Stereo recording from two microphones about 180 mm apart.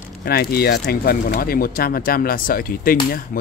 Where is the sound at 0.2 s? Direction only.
60° left (ahead or behind).